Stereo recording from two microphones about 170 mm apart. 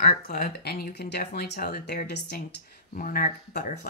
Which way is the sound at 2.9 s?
55° left (ahead or behind).